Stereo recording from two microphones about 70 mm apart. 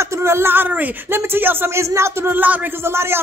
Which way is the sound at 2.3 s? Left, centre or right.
Right.